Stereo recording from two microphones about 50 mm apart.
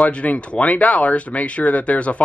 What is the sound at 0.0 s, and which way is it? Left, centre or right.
Speech, left.